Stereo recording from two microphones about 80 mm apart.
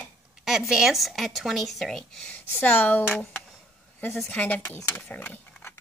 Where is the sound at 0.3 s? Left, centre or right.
Centre.